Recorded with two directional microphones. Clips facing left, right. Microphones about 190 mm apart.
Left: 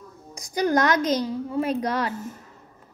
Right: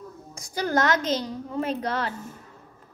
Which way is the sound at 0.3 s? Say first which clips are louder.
Left 4 dB; 15° left (ahead or behind).